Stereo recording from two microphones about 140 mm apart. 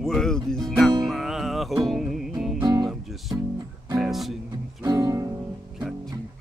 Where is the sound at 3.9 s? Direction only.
Centre (ahead or behind).